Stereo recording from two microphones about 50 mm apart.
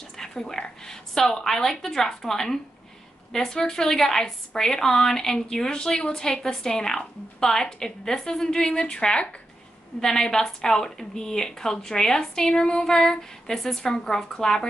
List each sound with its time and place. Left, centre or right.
0.2 s a woman's voice: centre
9.9 s a woman's voice: centre